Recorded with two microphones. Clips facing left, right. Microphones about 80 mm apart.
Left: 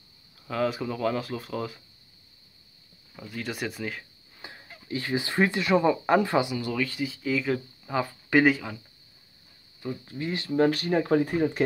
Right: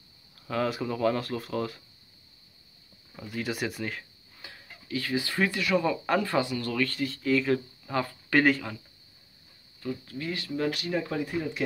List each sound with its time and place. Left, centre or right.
0.4 s speech: centre
3.2 s speech: centre
4.4 s speech: left; by 8.7 s centre
9.8 s speech: left
10.5 s speech: left